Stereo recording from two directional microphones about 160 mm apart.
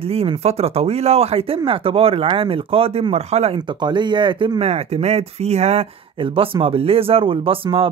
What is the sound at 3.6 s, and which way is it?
Speech, 30° right (ahead or behind).